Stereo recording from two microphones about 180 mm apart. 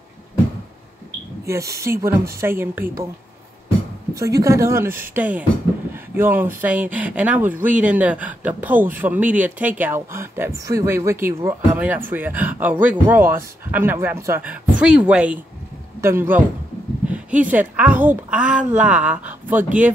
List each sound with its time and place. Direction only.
1.5 s a woman's voice: 15° right (ahead or behind)
4.1 s a woman's voice: 20° right (ahead or behind)